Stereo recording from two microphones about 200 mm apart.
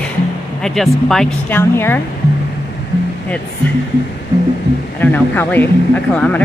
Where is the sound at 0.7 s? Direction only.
Centre (ahead or behind).